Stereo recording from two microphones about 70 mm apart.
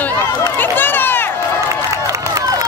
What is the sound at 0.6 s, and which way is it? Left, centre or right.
Run, left.